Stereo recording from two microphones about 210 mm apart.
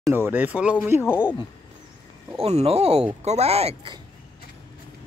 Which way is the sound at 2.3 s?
30° right (ahead or behind).